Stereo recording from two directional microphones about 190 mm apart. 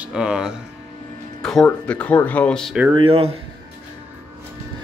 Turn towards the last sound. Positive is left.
turn(degrees=-30)  # may be behind; listen again after turning